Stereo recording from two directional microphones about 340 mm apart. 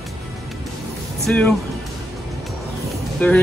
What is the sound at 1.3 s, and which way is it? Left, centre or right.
Speech, centre.